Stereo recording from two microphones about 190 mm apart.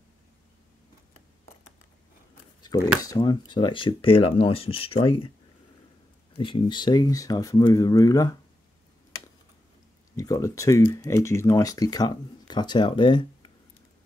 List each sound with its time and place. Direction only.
2.7 s speech: 20° left (ahead or behind)
6.3 s speech: 25° left (ahead or behind)
10.1 s speech: 15° left (ahead or behind)